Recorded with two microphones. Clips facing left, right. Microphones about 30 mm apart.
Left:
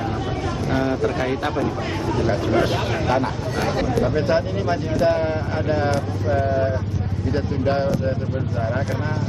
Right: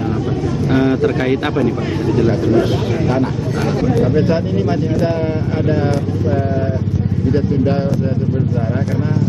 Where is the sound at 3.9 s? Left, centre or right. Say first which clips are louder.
Right 3 dB; centre.